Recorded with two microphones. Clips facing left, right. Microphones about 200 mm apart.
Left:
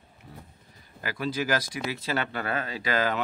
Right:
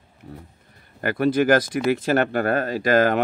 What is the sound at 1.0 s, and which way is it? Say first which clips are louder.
Speech: right 11 dB; 55° right (ahead or behind).